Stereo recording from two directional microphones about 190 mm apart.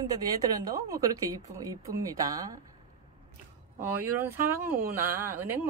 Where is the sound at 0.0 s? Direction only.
20° right (ahead or behind).